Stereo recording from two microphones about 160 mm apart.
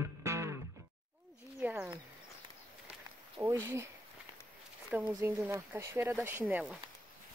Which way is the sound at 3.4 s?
15° right (ahead or behind).